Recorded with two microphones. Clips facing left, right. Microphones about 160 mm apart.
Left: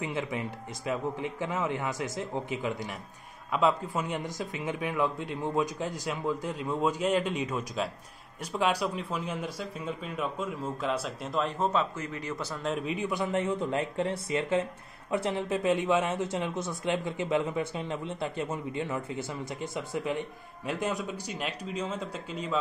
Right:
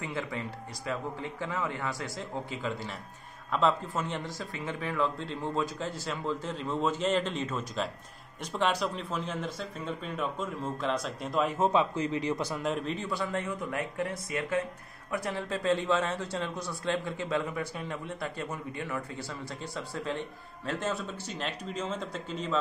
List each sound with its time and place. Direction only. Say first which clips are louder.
0.0 s speech: left 3 dB; 20° left (ahead or behind); by 12.6 s 15° right (ahead or behind)
12.6 s speech: left 2 dB; 5° left (ahead or behind)
13.0 s speech: left 4 dB; 20° left (ahead or behind)